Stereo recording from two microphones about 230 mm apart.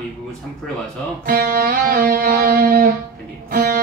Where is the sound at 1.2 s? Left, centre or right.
Right.